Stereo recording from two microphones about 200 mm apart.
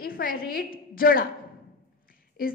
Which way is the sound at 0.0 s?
45° left (ahead or behind).